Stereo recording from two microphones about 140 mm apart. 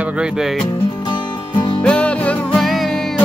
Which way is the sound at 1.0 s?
35° left (ahead or behind).